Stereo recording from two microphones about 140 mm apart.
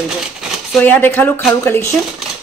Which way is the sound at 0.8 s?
15° left (ahead or behind).